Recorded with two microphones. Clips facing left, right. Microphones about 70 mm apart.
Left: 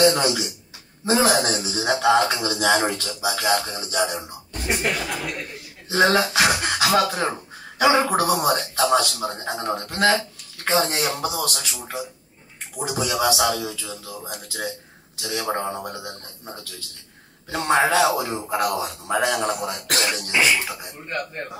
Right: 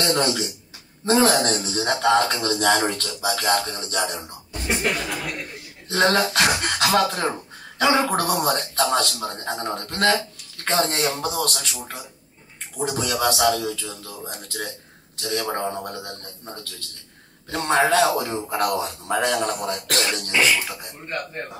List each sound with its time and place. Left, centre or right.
0.0 s a man's voice: centre
5.9 s a man's voice: centre